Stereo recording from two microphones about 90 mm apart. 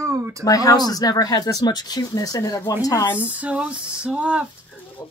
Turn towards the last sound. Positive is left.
turn(degrees=-15)  # may be behind; listen again after turning